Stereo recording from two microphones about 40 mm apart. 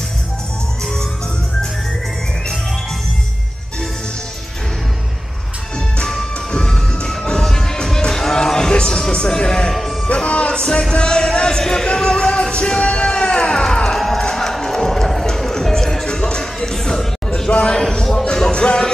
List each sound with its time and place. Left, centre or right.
6.5 s music: left
10.0 s music: left
13.9 s music: centre
17.5 s a sound: left
17.7 s a sound: centre
18.2 s music: centre